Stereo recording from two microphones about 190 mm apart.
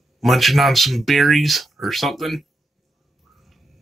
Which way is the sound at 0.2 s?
Centre (ahead or behind).